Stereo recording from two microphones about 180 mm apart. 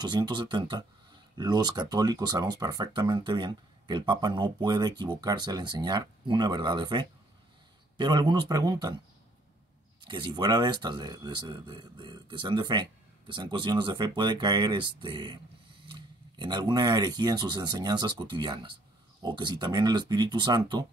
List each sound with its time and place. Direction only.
0.0 s speech: 25° right (ahead or behind)
10.0 s speech: 25° right (ahead or behind)